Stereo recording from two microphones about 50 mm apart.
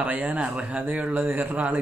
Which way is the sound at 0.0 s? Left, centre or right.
Right.